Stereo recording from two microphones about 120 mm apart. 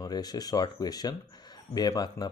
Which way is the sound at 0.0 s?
35° left (ahead or behind).